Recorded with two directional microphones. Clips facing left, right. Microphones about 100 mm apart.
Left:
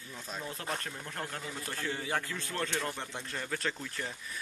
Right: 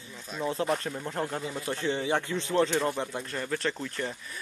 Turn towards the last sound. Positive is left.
turn(degrees=0)  # may be behind; listen again after turning